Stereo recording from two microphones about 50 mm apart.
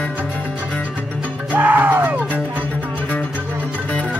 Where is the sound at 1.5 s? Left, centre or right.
Right.